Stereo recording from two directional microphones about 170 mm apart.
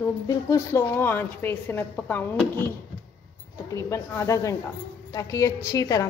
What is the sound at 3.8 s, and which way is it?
A woman's voice, 15° left (ahead or behind).